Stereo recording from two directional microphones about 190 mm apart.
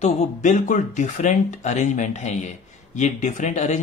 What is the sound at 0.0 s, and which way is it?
A man's voice, 35° left (ahead or behind).